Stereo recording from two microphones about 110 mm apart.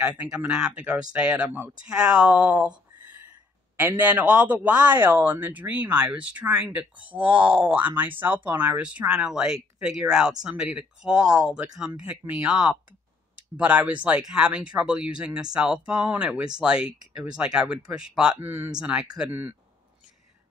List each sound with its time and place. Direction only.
0.2 s speech: 10° right (ahead or behind)
4.0 s speech: 15° right (ahead or behind)
18.4 s speech: 20° right (ahead or behind)
18.8 s speech: 10° right (ahead or behind)